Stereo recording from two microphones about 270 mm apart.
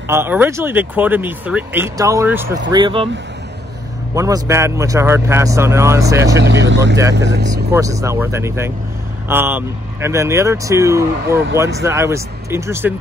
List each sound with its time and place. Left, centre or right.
0.1 s speech: centre
4.1 s speech: centre
6.4 s speech: right
7.5 s speech: centre